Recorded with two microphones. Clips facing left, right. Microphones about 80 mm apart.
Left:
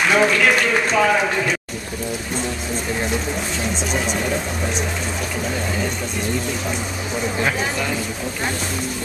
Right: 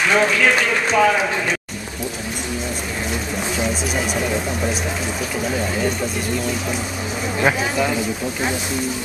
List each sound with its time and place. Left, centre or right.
0.1 s a man's voice: centre